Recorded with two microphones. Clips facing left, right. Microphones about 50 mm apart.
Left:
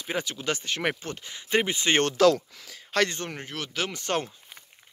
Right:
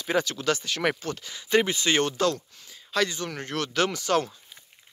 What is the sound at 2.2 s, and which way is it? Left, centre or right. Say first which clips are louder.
Speech: left 10 dB; left.